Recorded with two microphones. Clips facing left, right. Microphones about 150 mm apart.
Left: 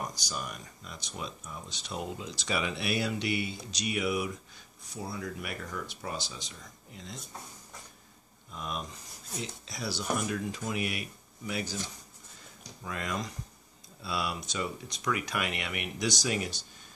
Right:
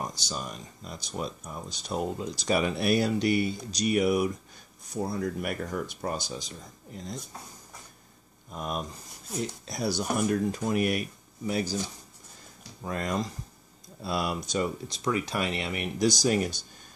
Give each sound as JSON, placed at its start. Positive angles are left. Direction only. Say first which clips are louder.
{"t": 0.0, "sound": "speech", "louder": "right 2 dB", "side_deg": -25}
{"t": 8.5, "sound": "speech", "louder": "right 5 dB", "side_deg": -45}
{"t": 12.8, "sound": "speech", "louder": "right 5 dB", "side_deg": -40}